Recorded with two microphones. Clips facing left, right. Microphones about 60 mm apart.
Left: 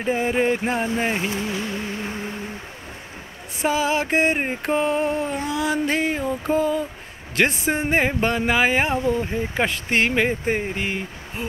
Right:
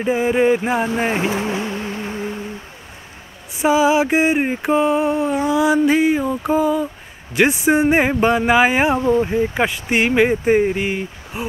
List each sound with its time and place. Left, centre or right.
0.0 s mantra: centre
1.5 s a sound: right
2.0 s humming: centre
3.5 s mantra: centre